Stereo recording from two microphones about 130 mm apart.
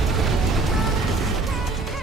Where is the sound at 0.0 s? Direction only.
Centre (ahead or behind).